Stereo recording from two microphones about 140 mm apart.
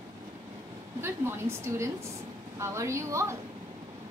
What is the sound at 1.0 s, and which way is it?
A woman's voice, 20° right (ahead or behind).